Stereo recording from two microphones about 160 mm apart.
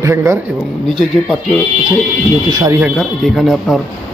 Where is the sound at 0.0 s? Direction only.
20° right (ahead or behind).